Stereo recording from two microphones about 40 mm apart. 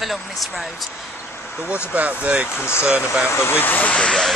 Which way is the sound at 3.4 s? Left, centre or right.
Left.